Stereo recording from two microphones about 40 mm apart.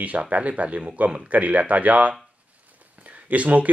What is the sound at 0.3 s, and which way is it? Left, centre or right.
Speech, right.